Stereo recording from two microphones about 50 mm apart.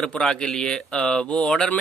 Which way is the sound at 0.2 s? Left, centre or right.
Centre.